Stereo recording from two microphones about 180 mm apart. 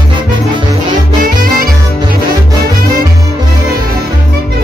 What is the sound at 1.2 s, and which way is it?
Music, 55° right (ahead or behind).